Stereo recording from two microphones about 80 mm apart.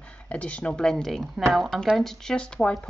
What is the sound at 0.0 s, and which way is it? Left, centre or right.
A woman's voice, centre.